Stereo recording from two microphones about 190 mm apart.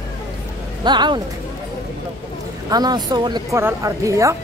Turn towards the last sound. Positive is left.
turn(degrees=-15)  # may be behind; listen again after turning